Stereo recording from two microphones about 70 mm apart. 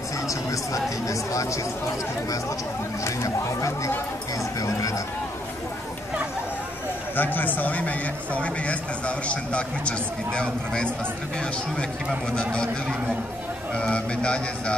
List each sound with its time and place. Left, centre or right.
0.3 s speech: left
3.0 s speech: left
7.2 s a man's voice: left
13.7 s a man's voice: centre